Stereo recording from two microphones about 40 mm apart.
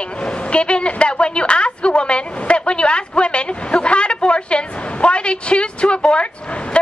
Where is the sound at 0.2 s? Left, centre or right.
Left.